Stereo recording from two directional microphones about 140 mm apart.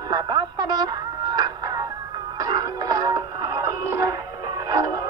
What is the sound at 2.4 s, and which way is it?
Music, 25° right (ahead or behind).